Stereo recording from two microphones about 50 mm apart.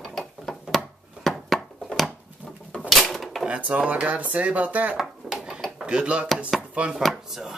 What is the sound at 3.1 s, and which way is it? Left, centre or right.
Drawer open or close, centre.